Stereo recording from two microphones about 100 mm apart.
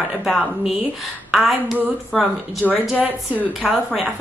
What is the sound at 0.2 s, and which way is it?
A woman's voice, 5° right (ahead or behind).